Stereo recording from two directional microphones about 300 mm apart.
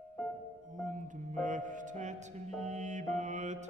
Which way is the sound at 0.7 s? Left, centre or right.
Right.